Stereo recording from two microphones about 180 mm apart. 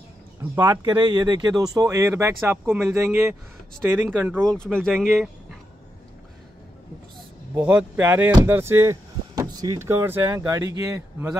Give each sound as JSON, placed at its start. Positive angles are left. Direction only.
{"t": 0.6, "sound": "speech", "side_deg": -25}
{"t": 4.4, "sound": "speech", "side_deg": 5}
{"t": 7.2, "sound": "speech", "side_deg": -10}